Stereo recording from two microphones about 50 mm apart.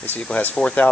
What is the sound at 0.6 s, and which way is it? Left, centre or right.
Speech, centre.